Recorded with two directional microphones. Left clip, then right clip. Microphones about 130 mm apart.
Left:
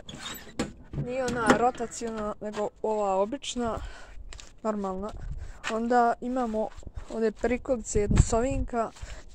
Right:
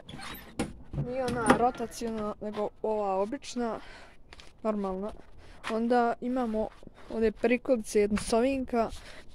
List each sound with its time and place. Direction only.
1.0 s speech: 10° left (ahead or behind)
1.6 s speech: centre (ahead or behind)
7.4 s speech: 30° right (ahead or behind)